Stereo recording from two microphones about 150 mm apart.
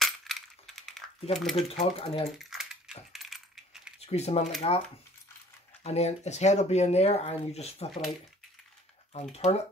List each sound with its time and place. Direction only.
0.0 s coin: centre (ahead or behind)
1.3 s speech: centre (ahead or behind)
1.7 s speech: 45° left (ahead or behind)
2.3 s coin: centre (ahead or behind)
4.0 s speech: 45° left (ahead or behind)
5.9 s speech: 45° left (ahead or behind)
9.3 s speech: 45° left (ahead or behind)